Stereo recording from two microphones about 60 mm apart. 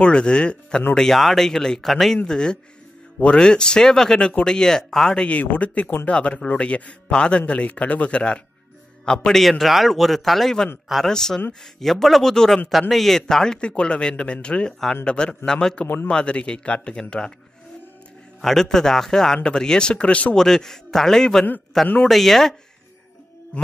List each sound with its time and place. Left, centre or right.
0.0 s speech: centre
0.9 s a man's voice: centre
2.2 s speech: centre
5.2 s a man's voice: left
9.4 s a man's voice: centre
13.6 s speech: centre
18.4 s speech: centre
20.3 s a man's voice: centre